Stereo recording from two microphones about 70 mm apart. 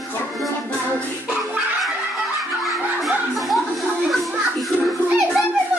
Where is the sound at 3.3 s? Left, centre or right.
Centre.